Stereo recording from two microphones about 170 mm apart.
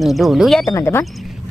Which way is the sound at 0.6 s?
20° left (ahead or behind).